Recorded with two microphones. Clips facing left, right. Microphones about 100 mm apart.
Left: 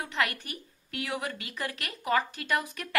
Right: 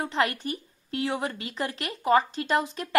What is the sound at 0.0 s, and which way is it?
A woman's voice, 30° right (ahead or behind).